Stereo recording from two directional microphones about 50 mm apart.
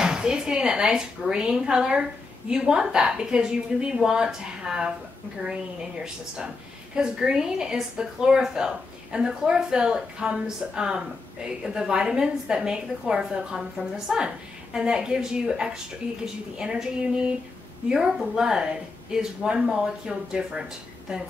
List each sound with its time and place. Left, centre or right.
0.0 s speech: centre
7.0 s speech: centre